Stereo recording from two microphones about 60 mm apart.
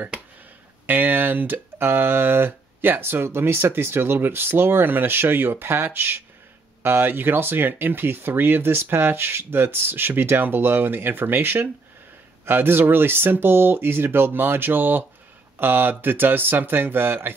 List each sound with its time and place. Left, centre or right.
0.8 s speech: right